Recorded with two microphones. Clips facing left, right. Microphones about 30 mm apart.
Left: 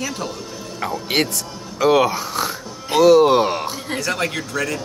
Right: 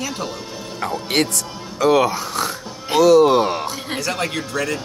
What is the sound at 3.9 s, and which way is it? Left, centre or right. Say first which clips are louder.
Speech: left 1 dB; centre.